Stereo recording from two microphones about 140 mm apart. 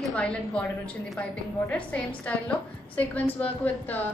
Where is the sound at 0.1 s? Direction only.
10° left (ahead or behind).